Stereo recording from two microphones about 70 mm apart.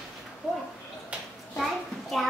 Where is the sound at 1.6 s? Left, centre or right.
Centre.